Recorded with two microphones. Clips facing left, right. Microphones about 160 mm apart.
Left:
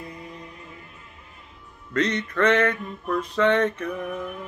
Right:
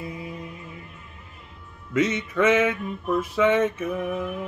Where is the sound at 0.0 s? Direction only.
5° right (ahead or behind).